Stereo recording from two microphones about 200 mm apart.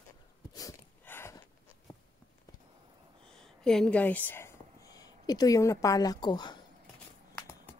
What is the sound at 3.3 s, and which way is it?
Speech, 5° left (ahead or behind).